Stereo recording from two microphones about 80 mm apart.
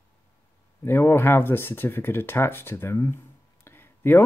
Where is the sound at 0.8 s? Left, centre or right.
Left.